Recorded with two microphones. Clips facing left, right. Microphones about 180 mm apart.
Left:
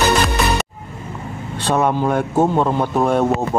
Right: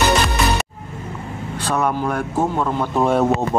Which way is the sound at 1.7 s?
20° left (ahead or behind).